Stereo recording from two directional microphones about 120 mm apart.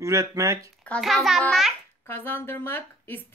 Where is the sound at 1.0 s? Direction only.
Centre (ahead or behind).